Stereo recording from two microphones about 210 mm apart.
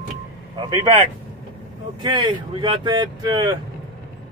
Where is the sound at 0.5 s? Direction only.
20° right (ahead or behind).